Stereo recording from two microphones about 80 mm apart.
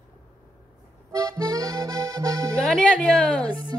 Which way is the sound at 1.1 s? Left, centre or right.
Right.